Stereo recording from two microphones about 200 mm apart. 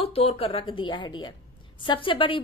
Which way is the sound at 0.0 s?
30° left (ahead or behind).